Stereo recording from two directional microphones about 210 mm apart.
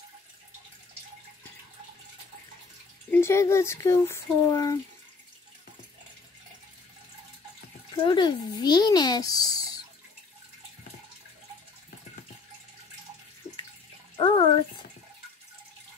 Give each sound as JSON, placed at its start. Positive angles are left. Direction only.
{"t": 3.1, "sound": "speech", "side_deg": 10}
{"t": 7.9, "sound": "a child's voice", "side_deg": 20}
{"t": 14.1, "sound": "bathtub", "side_deg": 20}